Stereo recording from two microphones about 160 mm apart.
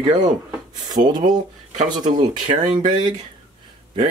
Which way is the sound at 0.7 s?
25° right (ahead or behind).